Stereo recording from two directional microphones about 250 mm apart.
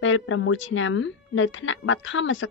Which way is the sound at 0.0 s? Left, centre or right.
Left.